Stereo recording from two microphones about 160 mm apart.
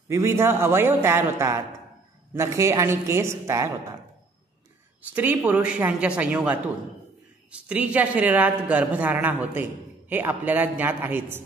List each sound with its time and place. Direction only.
0.1 s a woman's voice: 15° right (ahead or behind)
5.1 s a woman's voice: 10° right (ahead or behind)